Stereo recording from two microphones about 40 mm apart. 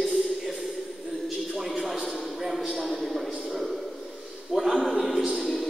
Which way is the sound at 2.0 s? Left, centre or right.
Centre.